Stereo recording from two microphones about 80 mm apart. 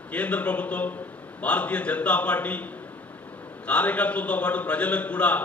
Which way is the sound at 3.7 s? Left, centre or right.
Centre.